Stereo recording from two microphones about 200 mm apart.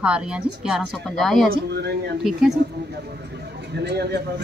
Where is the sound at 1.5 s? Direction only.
55° right (ahead or behind).